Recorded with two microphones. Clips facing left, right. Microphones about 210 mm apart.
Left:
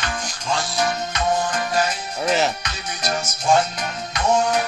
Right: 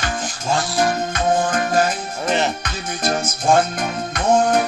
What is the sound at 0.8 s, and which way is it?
Music, 50° right (ahead or behind).